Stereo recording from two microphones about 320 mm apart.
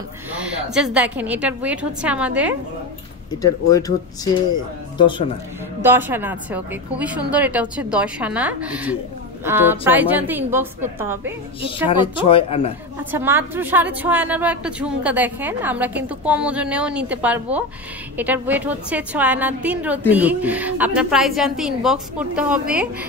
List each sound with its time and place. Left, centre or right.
0.3 s a woman's voice: centre
3.7 s speech: centre
5.8 s a woman's voice: centre
12.2 s speech: centre
13.1 s a woman's voice: centre